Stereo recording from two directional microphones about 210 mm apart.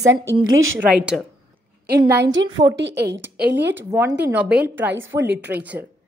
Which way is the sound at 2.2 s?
60° right (ahead or behind).